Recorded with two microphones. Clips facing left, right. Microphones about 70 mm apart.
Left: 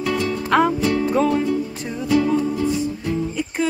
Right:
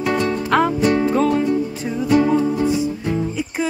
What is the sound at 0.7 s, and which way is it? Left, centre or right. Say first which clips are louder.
Music: right 2 dB; right.